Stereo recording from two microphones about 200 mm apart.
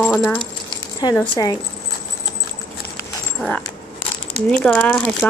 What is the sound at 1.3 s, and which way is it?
Speech, 20° left (ahead or behind).